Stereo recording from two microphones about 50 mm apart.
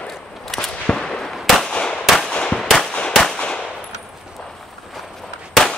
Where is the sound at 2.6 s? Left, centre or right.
Centre.